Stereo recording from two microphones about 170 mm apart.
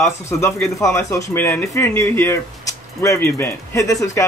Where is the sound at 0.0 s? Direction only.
15° left (ahead or behind).